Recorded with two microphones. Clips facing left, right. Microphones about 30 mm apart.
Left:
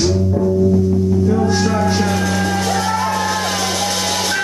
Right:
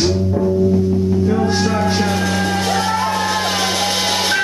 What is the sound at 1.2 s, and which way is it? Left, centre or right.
Music, right.